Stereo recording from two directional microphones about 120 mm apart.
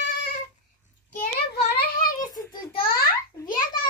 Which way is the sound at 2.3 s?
40° left (ahead or behind).